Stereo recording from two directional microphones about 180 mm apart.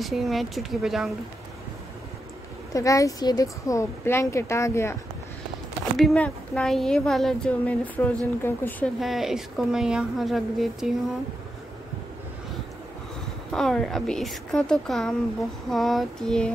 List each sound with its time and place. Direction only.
0.0 s speech: centre (ahead or behind)
2.7 s a woman's voice: 20° left (ahead or behind)
5.9 s speech: 5° left (ahead or behind)
13.5 s speech: centre (ahead or behind)